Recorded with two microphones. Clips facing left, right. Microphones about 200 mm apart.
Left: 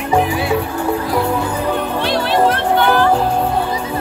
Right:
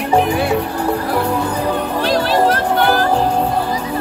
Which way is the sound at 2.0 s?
40° right (ahead or behind).